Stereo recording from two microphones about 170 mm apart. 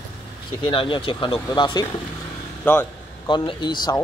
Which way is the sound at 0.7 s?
30° left (ahead or behind).